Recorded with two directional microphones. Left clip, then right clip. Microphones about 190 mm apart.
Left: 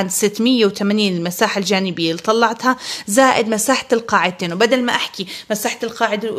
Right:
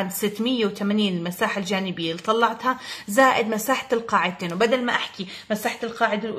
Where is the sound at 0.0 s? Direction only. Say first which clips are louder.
Left 8 dB; 45° left (ahead or behind).